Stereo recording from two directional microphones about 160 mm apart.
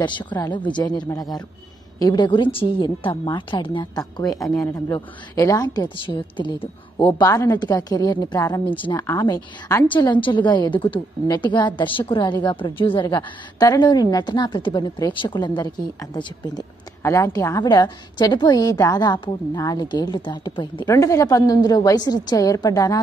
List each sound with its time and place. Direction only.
0.0 s a woman's voice: 30° left (ahead or behind)
7.2 s a woman's voice: 20° left (ahead or behind)
8.6 s speech: 30° left (ahead or behind)
8.9 s a woman's voice: 20° left (ahead or behind)